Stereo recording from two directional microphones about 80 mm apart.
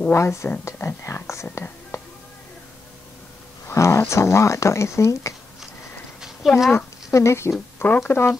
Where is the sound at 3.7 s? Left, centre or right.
Left.